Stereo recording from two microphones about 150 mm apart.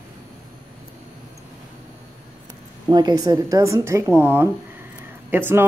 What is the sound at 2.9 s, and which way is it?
A woman's voice, 30° right (ahead or behind).